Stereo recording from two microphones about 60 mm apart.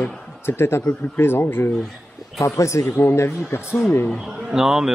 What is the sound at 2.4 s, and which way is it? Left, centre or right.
Speech, left.